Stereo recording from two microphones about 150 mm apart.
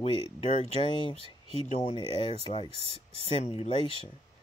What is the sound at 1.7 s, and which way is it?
Speech, 45° left (ahead or behind).